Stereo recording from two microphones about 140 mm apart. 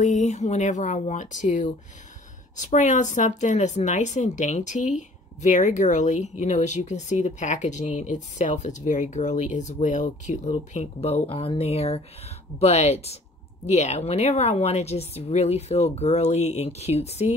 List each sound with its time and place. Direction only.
0.0 s a woman's voice: 60° left (ahead or behind)